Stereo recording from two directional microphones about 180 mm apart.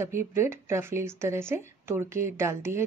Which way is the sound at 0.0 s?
15° right (ahead or behind).